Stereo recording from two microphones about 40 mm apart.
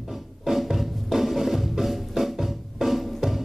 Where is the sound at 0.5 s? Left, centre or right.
Centre.